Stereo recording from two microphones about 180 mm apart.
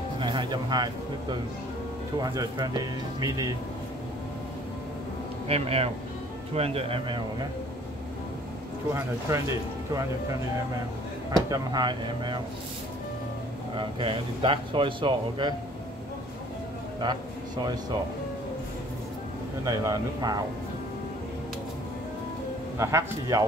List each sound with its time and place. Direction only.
0.2 s music: 25° right (ahead or behind)
2.1 s a man's voice: 20° right (ahead or behind)
5.5 s speech: 35° right (ahead or behind)
8.9 s speech: 15° right (ahead or behind)
11.3 s a man's voice: 20° right (ahead or behind)
13.7 s a man's voice: 30° right (ahead or behind)
19.6 s a man's voice: 20° right (ahead or behind)
22.8 s speech: 15° right (ahead or behind)